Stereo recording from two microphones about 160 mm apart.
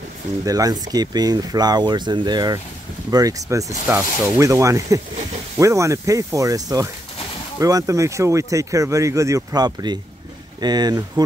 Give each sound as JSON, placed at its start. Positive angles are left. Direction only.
{"t": 0.5, "sound": "speech", "side_deg": -25}